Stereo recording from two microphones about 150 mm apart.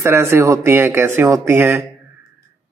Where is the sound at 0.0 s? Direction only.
15° right (ahead or behind).